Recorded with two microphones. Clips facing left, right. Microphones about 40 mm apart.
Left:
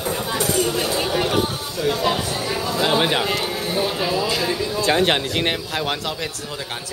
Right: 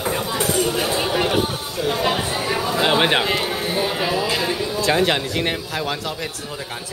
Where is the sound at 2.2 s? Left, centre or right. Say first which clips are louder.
Right 2 dB; right.